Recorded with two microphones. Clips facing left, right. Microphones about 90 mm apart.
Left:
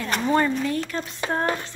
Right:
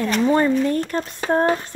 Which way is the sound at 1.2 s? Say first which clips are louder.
Right 6 dB; 30° right (ahead or behind).